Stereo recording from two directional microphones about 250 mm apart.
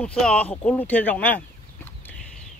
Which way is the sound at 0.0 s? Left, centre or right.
Centre.